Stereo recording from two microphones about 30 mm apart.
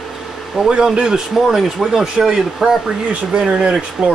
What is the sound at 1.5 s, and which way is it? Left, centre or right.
Speech, centre.